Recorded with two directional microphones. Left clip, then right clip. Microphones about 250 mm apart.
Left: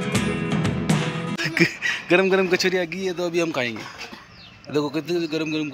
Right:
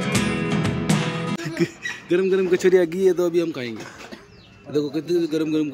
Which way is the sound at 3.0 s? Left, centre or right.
Centre.